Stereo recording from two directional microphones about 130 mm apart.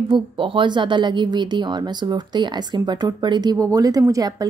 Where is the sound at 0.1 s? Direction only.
40° right (ahead or behind).